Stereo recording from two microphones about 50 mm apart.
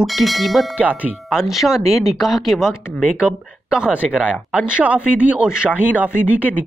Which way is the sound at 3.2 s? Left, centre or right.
Right.